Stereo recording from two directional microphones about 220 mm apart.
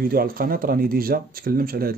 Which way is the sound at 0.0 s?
40° right (ahead or behind).